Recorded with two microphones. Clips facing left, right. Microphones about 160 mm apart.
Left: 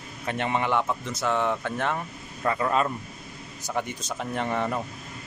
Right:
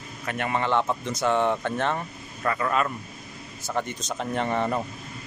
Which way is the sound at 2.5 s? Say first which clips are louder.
Left 1 dB; 20° left (ahead or behind).